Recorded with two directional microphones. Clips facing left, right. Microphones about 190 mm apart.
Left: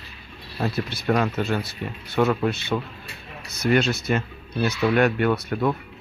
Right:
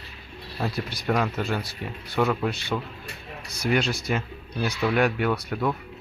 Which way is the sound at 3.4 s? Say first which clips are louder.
Left 4 dB; 10° right (ahead or behind).